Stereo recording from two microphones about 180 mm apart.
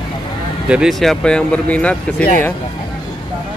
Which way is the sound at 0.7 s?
5° right (ahead or behind).